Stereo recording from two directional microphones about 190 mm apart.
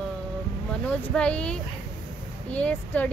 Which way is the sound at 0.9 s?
5° left (ahead or behind).